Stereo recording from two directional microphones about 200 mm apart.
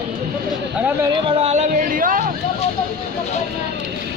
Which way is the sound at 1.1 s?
30° right (ahead or behind).